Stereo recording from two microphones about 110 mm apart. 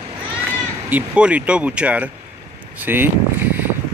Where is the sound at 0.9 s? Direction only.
10° right (ahead or behind).